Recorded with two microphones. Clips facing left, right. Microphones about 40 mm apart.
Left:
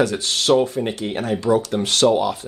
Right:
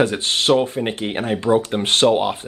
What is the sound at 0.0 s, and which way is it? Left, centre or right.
Speech, right.